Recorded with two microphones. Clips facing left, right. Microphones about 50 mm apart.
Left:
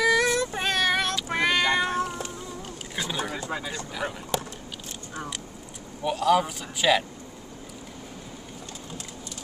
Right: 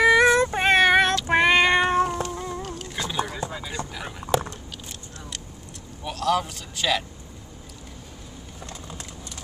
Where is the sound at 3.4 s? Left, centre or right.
Right.